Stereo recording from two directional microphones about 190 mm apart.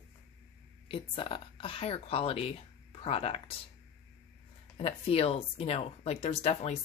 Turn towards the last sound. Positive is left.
turn(degrees=35)  # may be behind; listen again after turning